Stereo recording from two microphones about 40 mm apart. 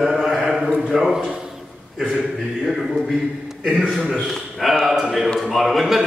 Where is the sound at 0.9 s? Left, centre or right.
Centre.